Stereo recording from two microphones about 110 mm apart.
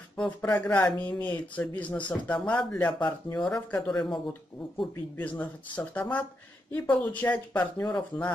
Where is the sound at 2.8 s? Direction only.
45° left (ahead or behind).